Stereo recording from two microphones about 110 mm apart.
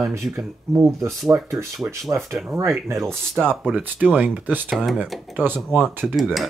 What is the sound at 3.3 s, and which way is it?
Speech, 5° left (ahead or behind).